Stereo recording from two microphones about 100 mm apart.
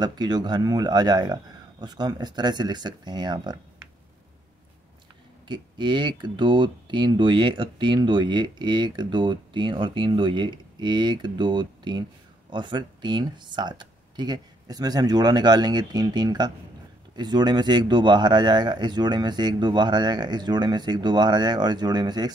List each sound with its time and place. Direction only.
0.0 s speech: 45° right (ahead or behind)
5.5 s speech: 50° right (ahead or behind)